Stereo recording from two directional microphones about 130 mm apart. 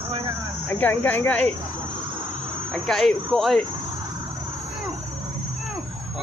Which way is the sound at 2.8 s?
Centre (ahead or behind).